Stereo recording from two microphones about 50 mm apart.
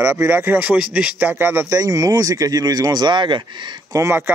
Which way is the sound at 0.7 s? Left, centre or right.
Right.